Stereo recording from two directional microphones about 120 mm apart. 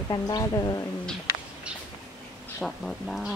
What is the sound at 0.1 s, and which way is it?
Speech, 30° left (ahead or behind).